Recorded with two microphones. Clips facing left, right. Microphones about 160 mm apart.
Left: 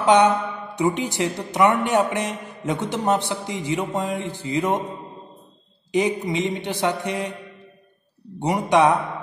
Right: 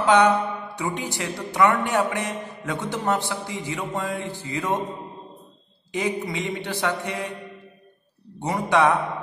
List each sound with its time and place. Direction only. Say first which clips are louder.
0.0 s a man's voice: left 1 dB; 20° left (ahead or behind)
5.9 s a man's voice: left 5 dB; 20° left (ahead or behind)
8.4 s a man's voice: left 3 dB; 15° left (ahead or behind)